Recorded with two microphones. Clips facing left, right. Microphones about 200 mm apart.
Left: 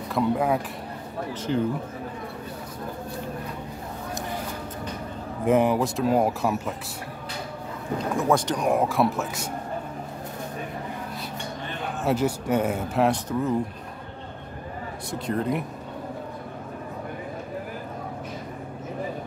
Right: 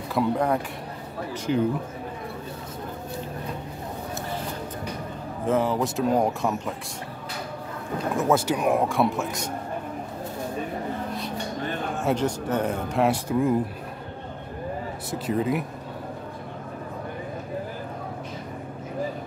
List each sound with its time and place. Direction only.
0.1 s speech: centre (ahead or behind)
1.5 s speech: 15° right (ahead or behind)
5.5 s speech: 15° left (ahead or behind)
5.8 s speech: centre (ahead or behind)
8.2 s speech: 5° right (ahead or behind)
12.0 s speech: 5° left (ahead or behind)
13.1 s speech: 10° right (ahead or behind)
15.0 s speech: 5° right (ahead or behind)